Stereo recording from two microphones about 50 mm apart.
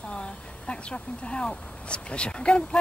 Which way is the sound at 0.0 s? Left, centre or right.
Centre.